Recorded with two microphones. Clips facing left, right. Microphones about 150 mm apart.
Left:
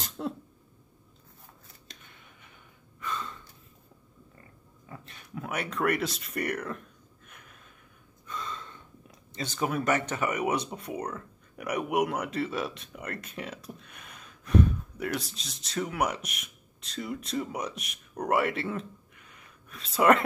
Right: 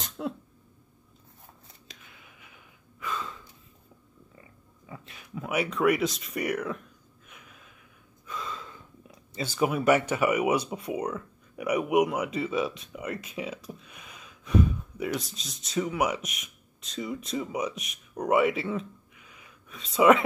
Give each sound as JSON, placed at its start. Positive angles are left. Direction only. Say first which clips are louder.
{"t": 0.2, "sound": "cough", "louder": "right 1 dB", "side_deg": 0}
{"t": 1.9, "sound": "gasp", "louder": "right 1 dB", "side_deg": -5}
{"t": 4.4, "sound": "a sound", "louder": "right 1 dB", "side_deg": -10}
{"t": 8.3, "sound": "gasp", "louder": "right 1 dB", "side_deg": 0}
{"t": 9.3, "sound": "speech", "louder": "right 3 dB", "side_deg": -5}